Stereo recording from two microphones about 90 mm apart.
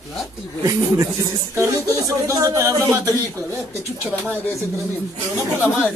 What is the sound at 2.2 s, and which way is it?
Speech, 40° right (ahead or behind).